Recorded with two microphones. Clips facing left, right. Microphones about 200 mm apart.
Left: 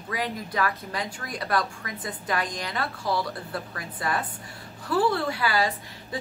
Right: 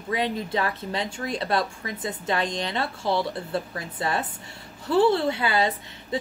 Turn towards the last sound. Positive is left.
turn(degrees=-25)  # may be behind; listen again after turning